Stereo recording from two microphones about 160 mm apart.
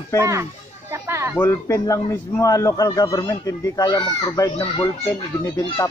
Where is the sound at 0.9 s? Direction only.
15° right (ahead or behind).